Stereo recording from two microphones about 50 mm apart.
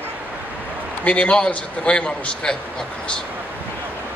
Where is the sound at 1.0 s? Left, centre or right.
Left.